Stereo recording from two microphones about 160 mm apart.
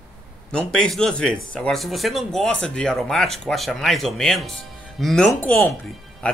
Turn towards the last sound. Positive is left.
turn(degrees=5)  # may be behind; listen again after turning